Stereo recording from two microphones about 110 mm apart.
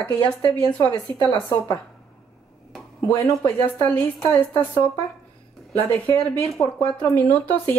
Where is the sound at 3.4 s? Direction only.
20° left (ahead or behind).